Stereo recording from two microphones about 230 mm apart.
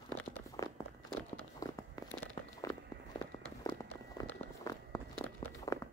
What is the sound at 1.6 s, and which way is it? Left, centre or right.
Walk, centre.